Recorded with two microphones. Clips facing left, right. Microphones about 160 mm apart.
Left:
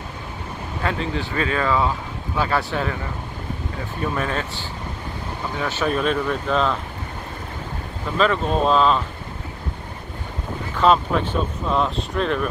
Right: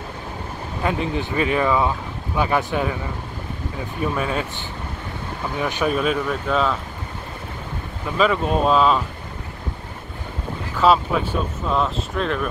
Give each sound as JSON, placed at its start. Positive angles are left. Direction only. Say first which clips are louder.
{"t": 0.8, "sound": "speech", "louder": "right 2 dB", "side_deg": -15}
{"t": 4.1, "sound": "speech", "louder": "even", "side_deg": -10}
{"t": 5.6, "sound": "speech", "louder": "right 1 dB", "side_deg": -15}
{"t": 5.9, "sound": "speech", "louder": "even", "side_deg": -5}
{"t": 8.2, "sound": "speech", "louder": "right 1 dB", "side_deg": -5}
{"t": 10.8, "sound": "speech", "louder": "even", "side_deg": -5}